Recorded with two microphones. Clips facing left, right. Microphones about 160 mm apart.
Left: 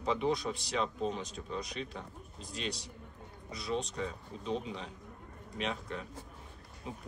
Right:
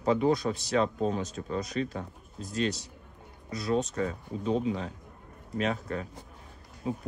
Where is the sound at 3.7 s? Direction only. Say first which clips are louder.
Right 7 dB; 45° right (ahead or behind).